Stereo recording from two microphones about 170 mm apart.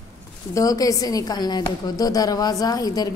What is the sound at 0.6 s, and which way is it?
A woman's voice, 20° left (ahead or behind).